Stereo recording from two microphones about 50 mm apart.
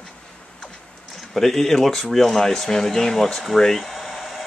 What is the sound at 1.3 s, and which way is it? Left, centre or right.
Speech, centre.